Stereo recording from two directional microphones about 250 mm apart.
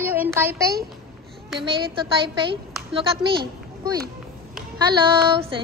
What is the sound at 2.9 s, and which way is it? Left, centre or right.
A woman's voice, centre.